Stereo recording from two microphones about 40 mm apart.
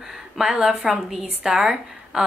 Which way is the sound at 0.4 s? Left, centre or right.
Centre.